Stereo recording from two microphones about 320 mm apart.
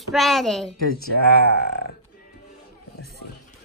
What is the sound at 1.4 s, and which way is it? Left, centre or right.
Speech, left.